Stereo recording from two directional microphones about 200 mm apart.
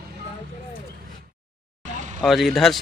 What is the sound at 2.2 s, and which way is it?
Speech, centre (ahead or behind).